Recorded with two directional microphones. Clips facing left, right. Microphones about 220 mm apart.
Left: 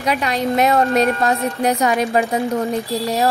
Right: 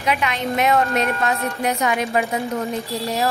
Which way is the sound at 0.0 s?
35° left (ahead or behind).